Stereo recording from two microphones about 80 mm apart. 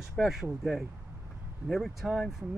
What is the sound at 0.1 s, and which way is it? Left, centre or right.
Speech, centre.